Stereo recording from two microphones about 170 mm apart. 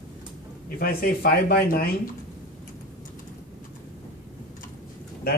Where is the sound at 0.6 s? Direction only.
60° left (ahead or behind).